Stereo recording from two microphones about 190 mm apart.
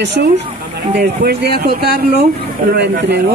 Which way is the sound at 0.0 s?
65° right (ahead or behind).